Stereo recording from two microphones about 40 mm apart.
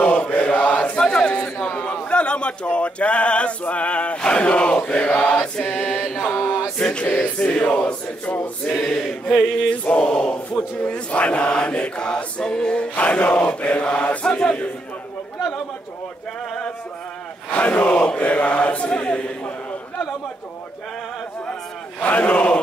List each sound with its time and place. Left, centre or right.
0.0 s mantra: left
0.9 s chant: left
2.0 s male singing: left
4.2 s chant: left
5.2 s mantra: left
5.6 s chant: left
6.8 s chant: left
8.7 s choir: centre
9.8 s chant: left
10.8 s chant: left
12.9 s chant: left
17.5 s a sound: left
18.2 s chant: left
22.0 s speech: left